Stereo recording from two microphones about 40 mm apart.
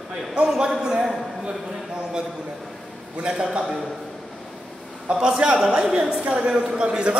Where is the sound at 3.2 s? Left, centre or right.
Right.